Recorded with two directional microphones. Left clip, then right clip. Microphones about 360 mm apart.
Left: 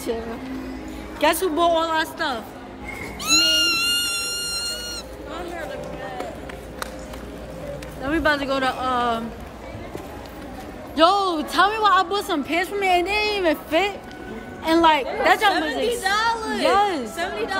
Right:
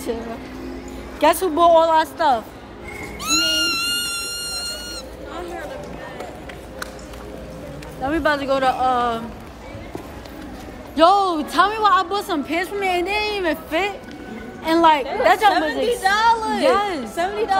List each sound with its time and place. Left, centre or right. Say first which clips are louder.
1.2 s a woman's voice: right 4 dB; centre
3.2 s a sound: left 1 dB; centre
8.0 s a woman's voice: right 1 dB; centre
11.0 s a woman's voice: right 3 dB; centre
16.0 s a woman's voice: right 8 dB; centre
16.6 s a woman's voice: even; centre
17.1 s a woman's voice: right 5 dB; centre